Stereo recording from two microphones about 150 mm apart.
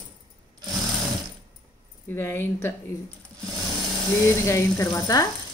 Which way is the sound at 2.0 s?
15° left (ahead or behind).